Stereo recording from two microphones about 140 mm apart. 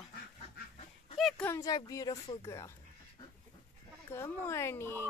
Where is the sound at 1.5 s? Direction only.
25° left (ahead or behind).